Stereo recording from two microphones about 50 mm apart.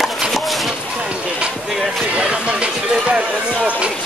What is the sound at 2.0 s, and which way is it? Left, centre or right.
Speech, right.